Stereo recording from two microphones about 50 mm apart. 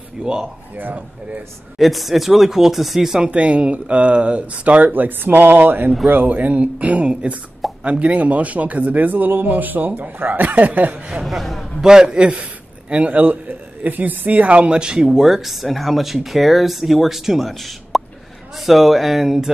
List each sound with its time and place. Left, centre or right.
0.2 s a man's voice: centre
0.7 s speech: right
1.8 s speech: centre
3.3 s a man's voice: right
4.8 s a man's voice: right
11.2 s a man's voice: centre
11.8 s a man's voice: centre